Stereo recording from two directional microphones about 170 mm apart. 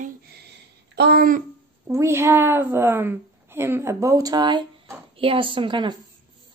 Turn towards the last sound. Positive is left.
turn(degrees=-30)  # may be behind; listen again after turning